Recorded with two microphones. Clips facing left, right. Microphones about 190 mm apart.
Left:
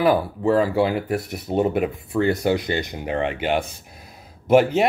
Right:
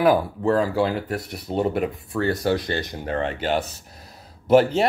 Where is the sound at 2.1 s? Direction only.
15° left (ahead or behind).